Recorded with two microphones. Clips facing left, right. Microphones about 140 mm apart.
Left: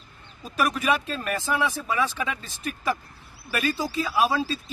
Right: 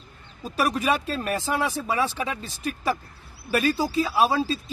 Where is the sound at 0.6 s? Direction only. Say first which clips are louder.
Right 1 dB; 35° right (ahead or behind).